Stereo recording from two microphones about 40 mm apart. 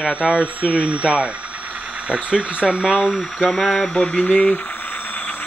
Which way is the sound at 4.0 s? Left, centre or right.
Left.